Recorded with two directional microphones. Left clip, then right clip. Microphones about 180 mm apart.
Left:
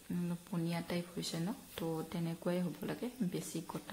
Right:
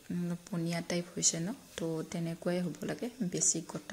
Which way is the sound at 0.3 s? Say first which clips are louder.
Right 4 dB; 20° right (ahead or behind).